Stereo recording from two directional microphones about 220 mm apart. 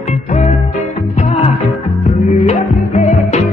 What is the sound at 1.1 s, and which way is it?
Music, 30° left (ahead or behind).